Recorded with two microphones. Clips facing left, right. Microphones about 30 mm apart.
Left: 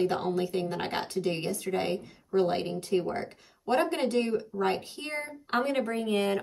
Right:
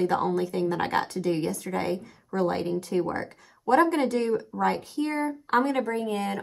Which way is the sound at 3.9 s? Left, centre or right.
Centre.